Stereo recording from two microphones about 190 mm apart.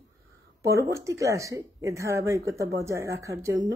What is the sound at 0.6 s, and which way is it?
Speech, 15° right (ahead or behind).